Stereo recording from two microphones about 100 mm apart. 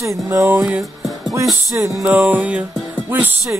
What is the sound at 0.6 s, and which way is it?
Music, 5° right (ahead or behind).